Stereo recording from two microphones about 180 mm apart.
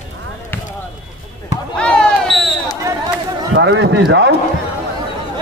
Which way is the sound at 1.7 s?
5° left (ahead or behind).